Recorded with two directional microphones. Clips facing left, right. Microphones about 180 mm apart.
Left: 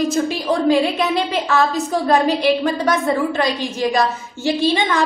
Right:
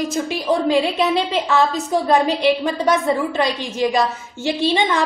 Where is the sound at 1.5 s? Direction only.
20° right (ahead or behind).